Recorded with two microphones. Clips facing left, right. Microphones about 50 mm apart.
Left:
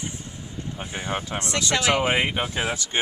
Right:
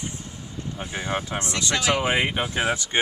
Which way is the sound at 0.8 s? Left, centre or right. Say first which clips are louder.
Right 2 dB; centre.